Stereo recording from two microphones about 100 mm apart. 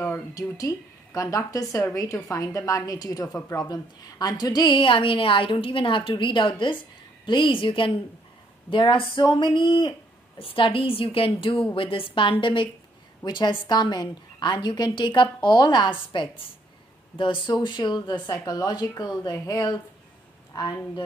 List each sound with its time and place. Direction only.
0.3 s a woman's voice: 35° left (ahead or behind)